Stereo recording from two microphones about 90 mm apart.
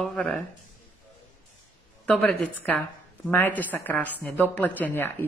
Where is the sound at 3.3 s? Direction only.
20° left (ahead or behind).